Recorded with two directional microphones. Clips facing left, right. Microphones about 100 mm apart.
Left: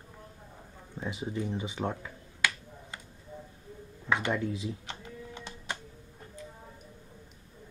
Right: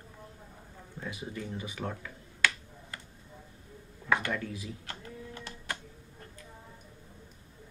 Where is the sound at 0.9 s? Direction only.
20° left (ahead or behind).